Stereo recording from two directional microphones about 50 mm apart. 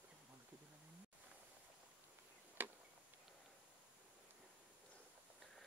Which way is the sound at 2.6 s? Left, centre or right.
Right.